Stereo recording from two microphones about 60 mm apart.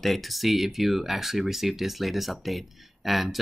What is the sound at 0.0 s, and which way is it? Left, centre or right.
Speech, centre.